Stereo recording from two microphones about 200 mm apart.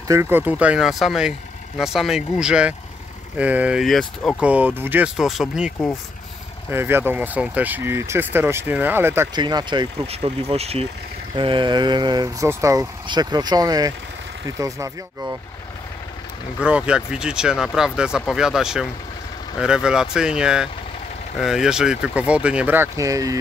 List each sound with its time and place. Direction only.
0.1 s speech: 10° right (ahead or behind)
6.7 s speech: 10° right (ahead or behind)
16.5 s speech: 5° right (ahead or behind)